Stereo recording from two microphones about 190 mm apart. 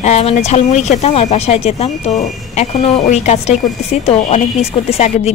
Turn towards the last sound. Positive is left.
turn(degrees=35)  # may be behind; listen again after turning